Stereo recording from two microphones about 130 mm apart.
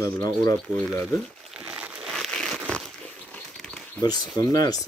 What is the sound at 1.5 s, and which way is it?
Crumpling, 10° right (ahead or behind).